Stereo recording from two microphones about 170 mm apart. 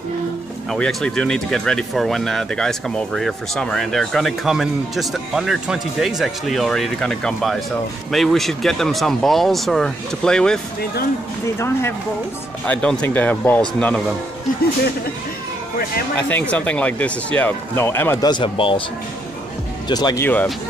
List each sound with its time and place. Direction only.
0.7 s speech: 5° left (ahead or behind)
11.5 s speech: 15° left (ahead or behind)
16.2 s speech: 10° left (ahead or behind); by 18.8 s 30° left (ahead or behind)
19.9 s speech: 25° left (ahead or behind)
20.2 s speech: 10° left (ahead or behind)